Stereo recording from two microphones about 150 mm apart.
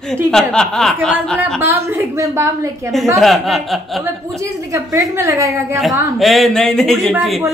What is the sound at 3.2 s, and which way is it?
Speech, centre (ahead or behind).